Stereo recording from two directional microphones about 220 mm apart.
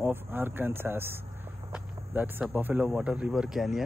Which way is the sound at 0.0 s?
10° right (ahead or behind).